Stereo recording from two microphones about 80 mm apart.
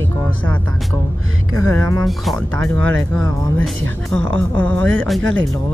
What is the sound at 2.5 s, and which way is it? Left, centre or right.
Speech, centre.